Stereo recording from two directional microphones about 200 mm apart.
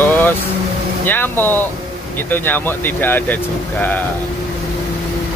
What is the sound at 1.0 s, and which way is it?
Speech, 10° left (ahead or behind).